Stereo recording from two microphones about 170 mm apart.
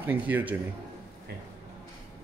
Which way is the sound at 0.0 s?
10° right (ahead or behind).